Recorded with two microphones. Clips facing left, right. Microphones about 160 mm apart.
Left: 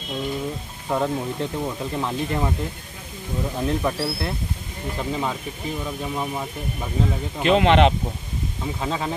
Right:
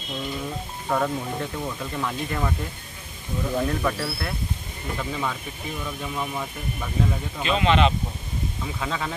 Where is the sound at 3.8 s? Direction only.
25° left (ahead or behind).